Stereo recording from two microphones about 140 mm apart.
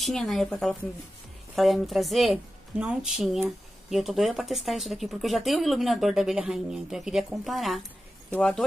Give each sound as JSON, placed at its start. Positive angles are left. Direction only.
{"t": 0.0, "sound": "a woman's voice", "side_deg": 0}